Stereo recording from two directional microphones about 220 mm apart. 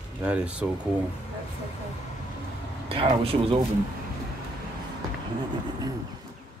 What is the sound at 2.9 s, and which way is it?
Speech, 25° right (ahead or behind).